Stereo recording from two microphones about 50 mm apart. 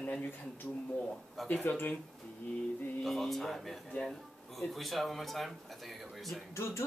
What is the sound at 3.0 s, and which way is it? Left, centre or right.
Speech, centre.